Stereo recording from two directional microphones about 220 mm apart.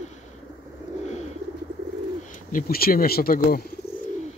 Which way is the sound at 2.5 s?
40° left (ahead or behind).